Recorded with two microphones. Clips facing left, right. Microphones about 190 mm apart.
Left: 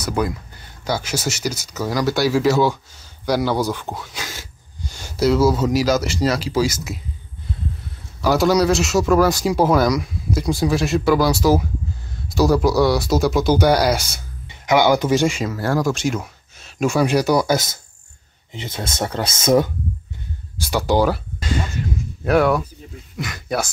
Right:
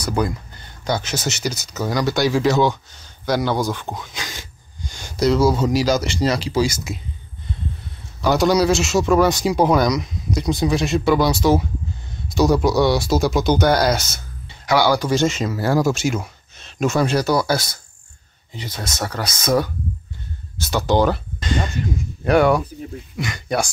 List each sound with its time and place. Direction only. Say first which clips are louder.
0.0 s speech: even; 5° left (ahead or behind)
8.2 s a man's voice: even; 5° left (ahead or behind)
12.4 s speech: even; centre (ahead or behind)
15.5 s speech: right 2 dB; 5° right (ahead or behind); by 19.7 s 25° left (ahead or behind)
20.5 s a man's voice: even; 10° left (ahead or behind)